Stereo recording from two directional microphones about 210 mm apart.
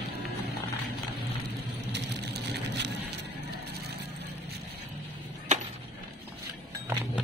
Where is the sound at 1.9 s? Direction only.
55° right (ahead or behind).